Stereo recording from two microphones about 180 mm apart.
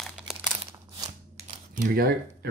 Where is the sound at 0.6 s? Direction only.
30° right (ahead or behind).